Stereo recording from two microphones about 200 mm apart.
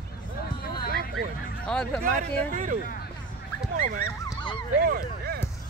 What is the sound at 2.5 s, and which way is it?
Speech, 40° right (ahead or behind).